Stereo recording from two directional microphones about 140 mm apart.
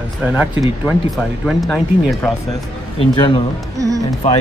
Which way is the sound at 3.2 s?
35° left (ahead or behind).